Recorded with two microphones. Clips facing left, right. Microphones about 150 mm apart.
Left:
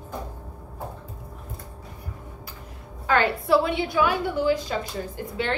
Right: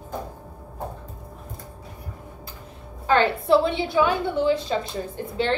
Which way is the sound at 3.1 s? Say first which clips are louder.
Right 2 dB; 25° right (ahead or behind).